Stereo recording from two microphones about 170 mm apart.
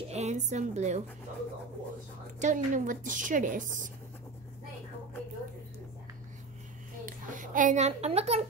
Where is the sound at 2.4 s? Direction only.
50° right (ahead or behind).